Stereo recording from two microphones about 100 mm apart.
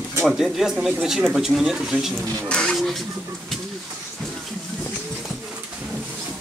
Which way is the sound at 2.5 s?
5° left (ahead or behind).